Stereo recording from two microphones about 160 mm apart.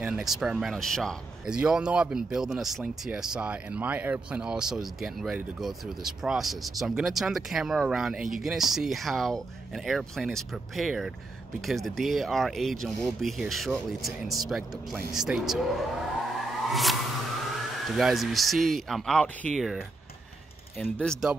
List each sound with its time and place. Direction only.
0.0 s speech: 5° right (ahead or behind)
16.3 s a sound: centre (ahead or behind)
17.8 s speech: centre (ahead or behind)
20.8 s speech: centre (ahead or behind)